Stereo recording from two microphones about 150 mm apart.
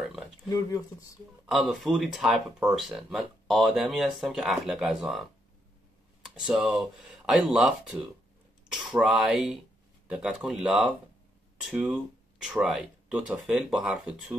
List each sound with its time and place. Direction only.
0.5 s speech: 25° left (ahead or behind)
1.4 s speech: 5° right (ahead or behind)
6.3 s speech: 5° right (ahead or behind)